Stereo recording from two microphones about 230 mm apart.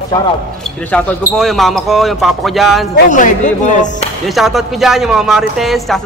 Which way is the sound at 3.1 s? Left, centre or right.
Left.